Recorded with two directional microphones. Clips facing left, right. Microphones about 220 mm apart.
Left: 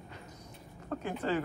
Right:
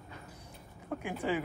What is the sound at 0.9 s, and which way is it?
Speech, 10° right (ahead or behind).